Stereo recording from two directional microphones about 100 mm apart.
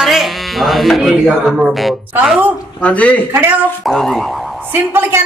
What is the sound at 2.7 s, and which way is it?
Speech, 15° left (ahead or behind).